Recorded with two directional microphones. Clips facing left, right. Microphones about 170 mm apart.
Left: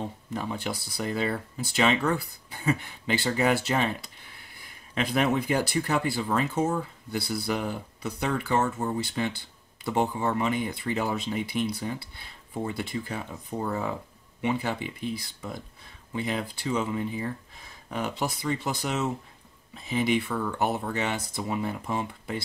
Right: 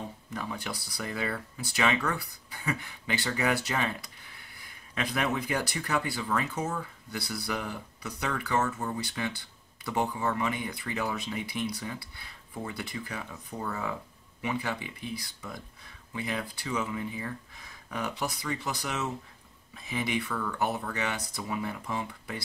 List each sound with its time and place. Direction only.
0.3 s speech: 25° left (ahead or behind)